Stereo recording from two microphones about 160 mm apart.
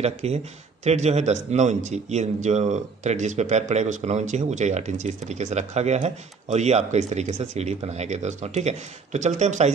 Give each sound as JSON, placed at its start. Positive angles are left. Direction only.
{"t": 0.0, "sound": "a man's voice", "side_deg": -40}